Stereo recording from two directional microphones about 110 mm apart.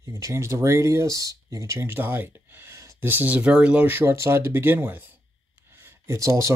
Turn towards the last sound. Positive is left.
turn(degrees=-30)  # may be behind; listen again after turning